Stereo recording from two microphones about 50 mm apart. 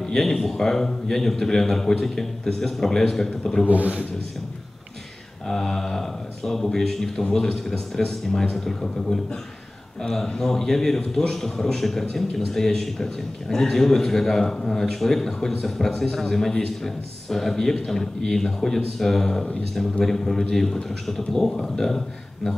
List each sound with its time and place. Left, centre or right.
0.0 s a man's voice: centre
3.6 s a man's voice: right
5.5 s a man's voice: centre